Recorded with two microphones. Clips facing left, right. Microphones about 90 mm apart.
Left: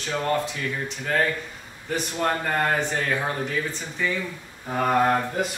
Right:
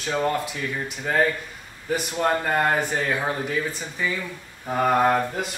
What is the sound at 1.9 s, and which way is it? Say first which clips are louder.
Speech: right 2 dB; 10° right (ahead or behind).